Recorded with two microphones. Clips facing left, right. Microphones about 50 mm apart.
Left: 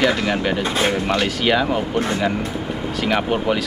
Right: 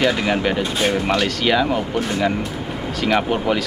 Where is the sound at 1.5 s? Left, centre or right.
Centre.